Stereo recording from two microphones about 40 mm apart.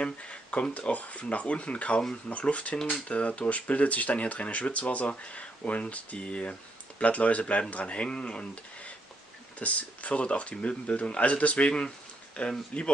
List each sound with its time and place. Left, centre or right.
0.0 s speech: left
9.6 s speech: left